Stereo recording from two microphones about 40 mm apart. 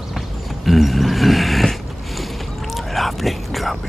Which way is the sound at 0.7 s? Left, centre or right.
Centre.